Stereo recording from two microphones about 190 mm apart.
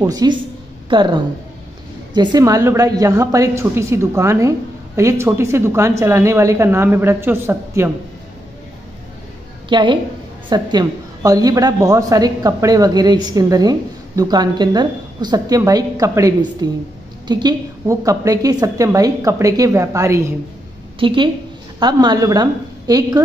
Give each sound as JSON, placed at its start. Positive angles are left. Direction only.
{"t": 0.0, "sound": "a woman's voice", "side_deg": -20}
{"t": 9.7, "sound": "a woman's voice", "side_deg": -25}
{"t": 21.0, "sound": "a woman's voice", "side_deg": -25}